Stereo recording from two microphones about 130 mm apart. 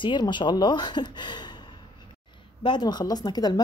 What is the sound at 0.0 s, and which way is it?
Speech, 35° left (ahead or behind).